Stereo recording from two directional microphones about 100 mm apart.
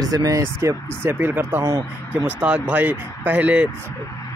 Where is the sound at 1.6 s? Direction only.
35° right (ahead or behind).